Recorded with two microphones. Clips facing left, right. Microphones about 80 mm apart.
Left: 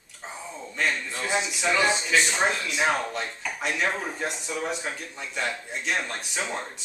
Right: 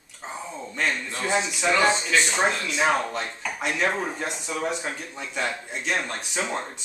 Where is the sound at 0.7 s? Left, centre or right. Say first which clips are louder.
Even; centre.